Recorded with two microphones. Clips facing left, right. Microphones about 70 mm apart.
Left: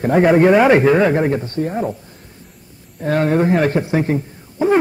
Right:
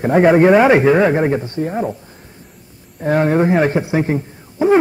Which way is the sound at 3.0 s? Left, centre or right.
Centre.